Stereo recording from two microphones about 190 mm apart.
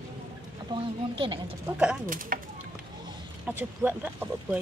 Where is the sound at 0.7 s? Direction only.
25° right (ahead or behind).